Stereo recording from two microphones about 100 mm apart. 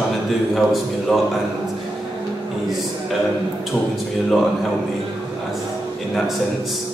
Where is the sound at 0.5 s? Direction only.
Centre (ahead or behind).